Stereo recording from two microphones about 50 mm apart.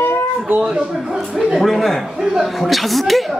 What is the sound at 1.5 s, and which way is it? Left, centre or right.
A man's voice, centre.